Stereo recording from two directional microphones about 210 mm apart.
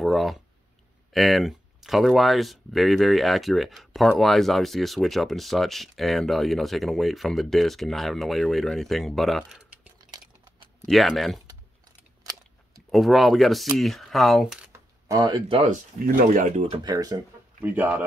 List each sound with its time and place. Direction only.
0.0 s speech: centre (ahead or behind)
9.9 s a sound: 20° right (ahead or behind)
10.9 s speech: centre (ahead or behind)
12.9 s speech: centre (ahead or behind)
15.0 s speech: 20° right (ahead or behind)
15.6 s speech: 40° right (ahead or behind); by 18.0 s 10° right (ahead or behind)